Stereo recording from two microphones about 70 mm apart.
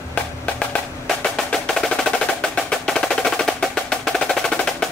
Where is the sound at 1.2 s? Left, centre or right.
Centre.